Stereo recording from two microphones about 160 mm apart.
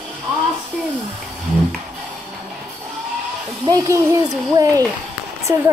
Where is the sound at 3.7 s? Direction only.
20° right (ahead or behind).